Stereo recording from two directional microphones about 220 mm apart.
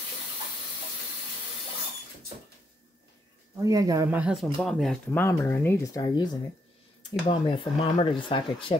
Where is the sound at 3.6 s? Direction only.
15° right (ahead or behind); by 8.8 s 25° left (ahead or behind).